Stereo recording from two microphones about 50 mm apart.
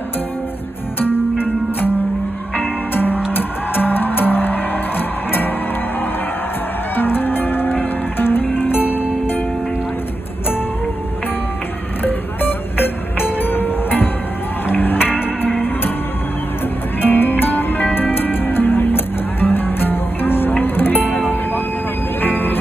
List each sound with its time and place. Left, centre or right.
2.9 s music: left
7.0 s music: left
12.0 s music: left
17.0 s music: left
22.2 s music: left